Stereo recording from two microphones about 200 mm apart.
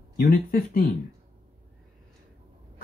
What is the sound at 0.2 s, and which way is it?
Speech, 45° left (ahead or behind).